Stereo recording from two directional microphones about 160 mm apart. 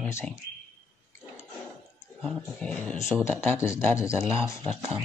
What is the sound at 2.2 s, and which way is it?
Speech, 5° left (ahead or behind).